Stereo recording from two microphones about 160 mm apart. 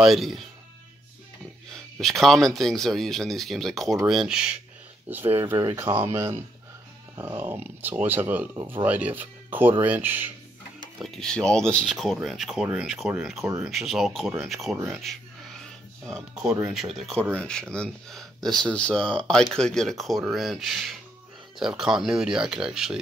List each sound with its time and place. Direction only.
0.0 s speech: centre (ahead or behind)
1.7 s speech: centre (ahead or behind)
11.0 s speech: centre (ahead or behind)
14.8 s a sound: centre (ahead or behind)
16.9 s speech: centre (ahead or behind)